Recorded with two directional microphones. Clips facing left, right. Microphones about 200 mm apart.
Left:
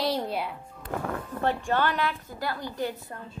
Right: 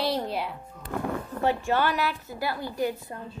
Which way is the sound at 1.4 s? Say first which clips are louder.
Right 1 dB; 10° right (ahead or behind).